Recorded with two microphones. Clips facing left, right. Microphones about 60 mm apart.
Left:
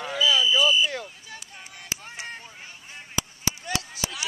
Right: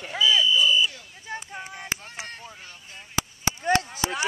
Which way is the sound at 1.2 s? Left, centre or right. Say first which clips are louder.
Right 8 dB; right.